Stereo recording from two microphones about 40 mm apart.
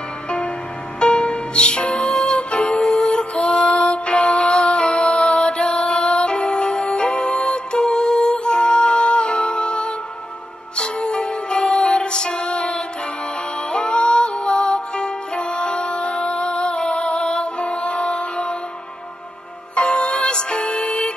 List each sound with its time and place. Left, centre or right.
0.9 s music: left
2.5 s music: left
2.8 s music: centre
3.3 s music: left
7.8 s music: centre
8.5 s music: left
11.0 s music: left
16.3 s music: left
19.7 s music: left